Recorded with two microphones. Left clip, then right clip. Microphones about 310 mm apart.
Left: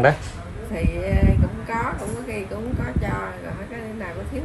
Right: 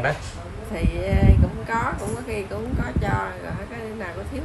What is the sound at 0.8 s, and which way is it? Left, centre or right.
Speech, right.